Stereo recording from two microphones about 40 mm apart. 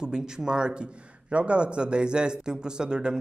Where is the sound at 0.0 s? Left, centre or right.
Centre.